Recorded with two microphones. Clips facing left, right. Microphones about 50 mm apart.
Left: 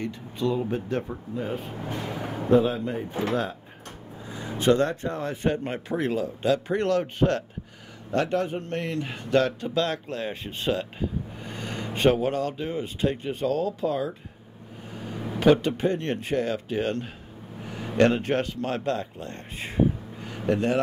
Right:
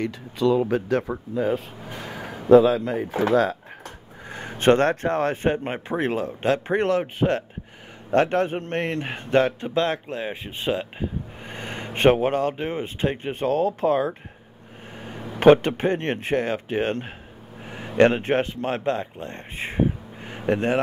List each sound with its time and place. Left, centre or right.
0.0 s speech: right
4.3 s a sound: right
4.8 s speech: right
5.4 s a man's voice: right
6.8 s speech: right
8.1 s a man's voice: right
14.9 s a sound: right
15.3 s a man's voice: right